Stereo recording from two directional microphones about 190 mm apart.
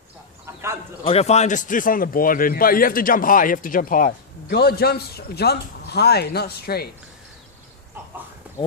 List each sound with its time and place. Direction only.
0.5 s speech: 15° right (ahead or behind)
1.0 s a man's voice: 35° left (ahead or behind); by 6.9 s 55° left (ahead or behind)
8.5 s a sound: 5° right (ahead or behind)